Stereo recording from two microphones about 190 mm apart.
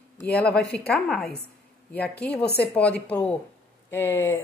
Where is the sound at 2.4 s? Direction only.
60° left (ahead or behind).